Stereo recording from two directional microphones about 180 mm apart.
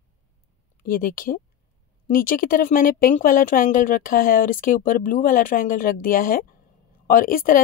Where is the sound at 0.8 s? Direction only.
55° left (ahead or behind).